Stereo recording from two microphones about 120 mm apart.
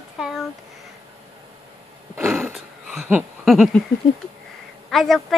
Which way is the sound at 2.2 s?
20° right (ahead or behind).